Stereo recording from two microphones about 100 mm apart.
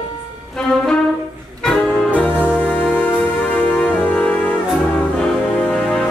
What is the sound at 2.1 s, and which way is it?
Music, 15° left (ahead or behind).